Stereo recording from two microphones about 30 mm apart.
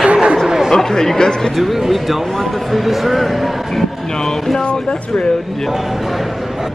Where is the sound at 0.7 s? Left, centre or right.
Centre.